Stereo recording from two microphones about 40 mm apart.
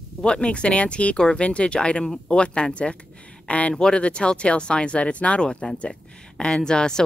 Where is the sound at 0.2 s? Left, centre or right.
Left.